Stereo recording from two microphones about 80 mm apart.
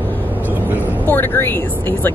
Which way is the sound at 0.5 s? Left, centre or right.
Right.